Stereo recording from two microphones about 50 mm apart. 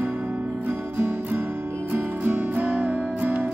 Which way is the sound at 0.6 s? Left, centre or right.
Right.